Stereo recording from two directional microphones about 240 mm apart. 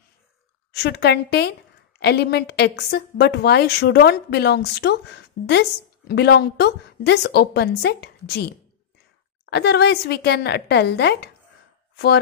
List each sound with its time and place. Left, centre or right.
0.7 s a woman's voice: left
9.5 s a woman's voice: left